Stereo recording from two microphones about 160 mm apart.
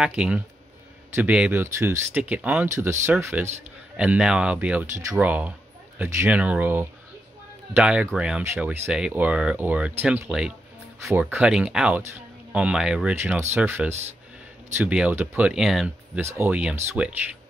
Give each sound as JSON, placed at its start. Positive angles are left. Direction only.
{"t": 0.0, "sound": "speech", "side_deg": -5}
{"t": 13.1, "sound": "speech", "side_deg": -15}